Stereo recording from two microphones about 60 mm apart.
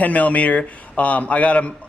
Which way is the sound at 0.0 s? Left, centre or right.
Left.